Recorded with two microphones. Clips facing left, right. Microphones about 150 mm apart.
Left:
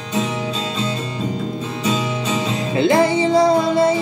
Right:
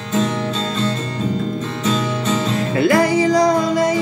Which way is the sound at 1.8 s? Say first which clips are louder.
Right 1 dB; 10° left (ahead or behind).